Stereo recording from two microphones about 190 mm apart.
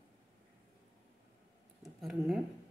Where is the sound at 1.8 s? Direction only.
Centre (ahead or behind).